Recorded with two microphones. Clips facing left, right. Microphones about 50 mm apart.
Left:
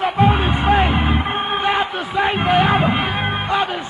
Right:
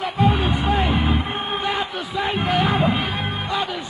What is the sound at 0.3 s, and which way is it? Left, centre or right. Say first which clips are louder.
Music: left 4 dB; left.